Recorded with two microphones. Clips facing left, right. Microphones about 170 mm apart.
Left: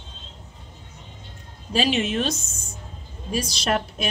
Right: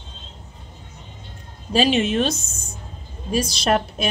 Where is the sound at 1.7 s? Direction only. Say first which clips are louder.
Right 4 dB; 30° right (ahead or behind).